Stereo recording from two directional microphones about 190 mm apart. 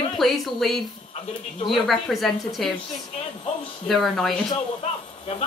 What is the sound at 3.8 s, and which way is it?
Speech, centre (ahead or behind).